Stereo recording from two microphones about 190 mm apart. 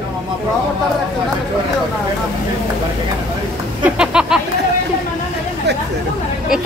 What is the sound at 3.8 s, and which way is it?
Speech, 5° right (ahead or behind).